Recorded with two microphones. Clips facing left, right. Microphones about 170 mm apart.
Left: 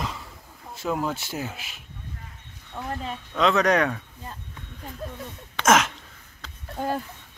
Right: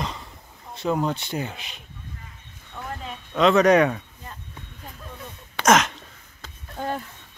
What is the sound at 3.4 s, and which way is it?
Speech, centre (ahead or behind).